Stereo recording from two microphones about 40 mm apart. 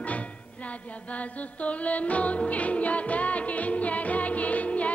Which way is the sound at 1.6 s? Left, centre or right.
Left.